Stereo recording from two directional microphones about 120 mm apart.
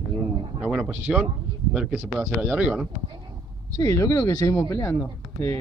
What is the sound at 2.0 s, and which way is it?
Speech, 15° right (ahead or behind).